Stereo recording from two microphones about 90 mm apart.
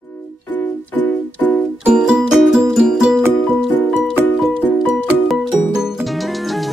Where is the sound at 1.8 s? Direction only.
10° right (ahead or behind).